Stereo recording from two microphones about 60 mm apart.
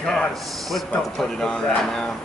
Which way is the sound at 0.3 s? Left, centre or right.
Centre.